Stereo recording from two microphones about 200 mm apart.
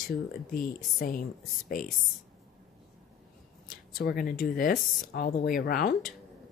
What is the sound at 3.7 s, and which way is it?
Speech, 45° left (ahead or behind).